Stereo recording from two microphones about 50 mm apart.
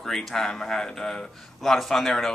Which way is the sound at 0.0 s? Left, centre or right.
Centre.